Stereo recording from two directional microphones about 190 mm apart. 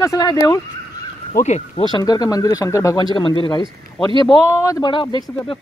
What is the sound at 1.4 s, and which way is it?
Speech, 35° left (ahead or behind).